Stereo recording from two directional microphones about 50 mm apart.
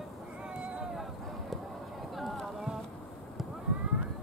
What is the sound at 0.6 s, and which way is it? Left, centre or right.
Boat, right.